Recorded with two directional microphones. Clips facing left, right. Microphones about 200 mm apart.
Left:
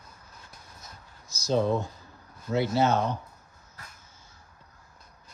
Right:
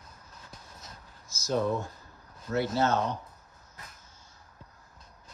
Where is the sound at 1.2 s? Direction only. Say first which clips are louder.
Left 3 dB; 35° left (ahead or behind).